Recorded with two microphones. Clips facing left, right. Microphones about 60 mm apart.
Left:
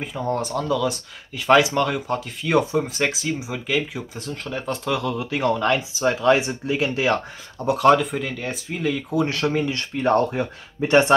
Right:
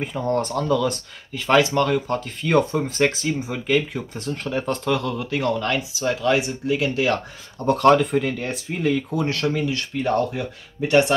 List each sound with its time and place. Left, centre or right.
0.0 s speech: centre
1.3 s speech: centre
7.5 s speech: centre
9.1 s speech: centre
9.7 s speech: left